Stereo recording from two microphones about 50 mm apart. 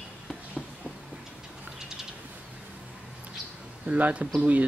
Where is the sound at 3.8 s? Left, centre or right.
Right.